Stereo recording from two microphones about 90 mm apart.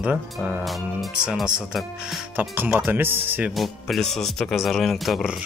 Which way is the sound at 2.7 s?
20° right (ahead or behind).